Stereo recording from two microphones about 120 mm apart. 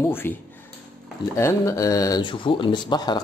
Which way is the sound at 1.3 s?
25° left (ahead or behind).